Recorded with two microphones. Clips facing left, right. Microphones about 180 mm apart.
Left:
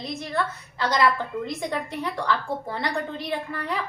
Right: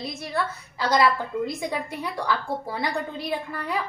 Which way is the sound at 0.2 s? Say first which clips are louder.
Even; 5° right (ahead or behind).